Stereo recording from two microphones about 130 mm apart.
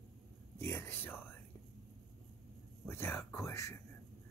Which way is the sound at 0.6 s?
20° left (ahead or behind).